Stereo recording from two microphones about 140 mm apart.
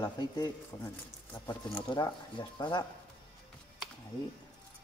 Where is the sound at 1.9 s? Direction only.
35° left (ahead or behind).